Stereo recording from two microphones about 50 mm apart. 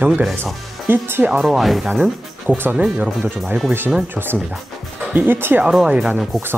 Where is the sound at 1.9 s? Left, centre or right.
Centre.